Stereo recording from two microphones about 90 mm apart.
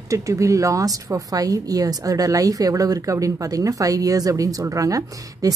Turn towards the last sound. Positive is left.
turn(degrees=-40)  # may be behind; listen again after turning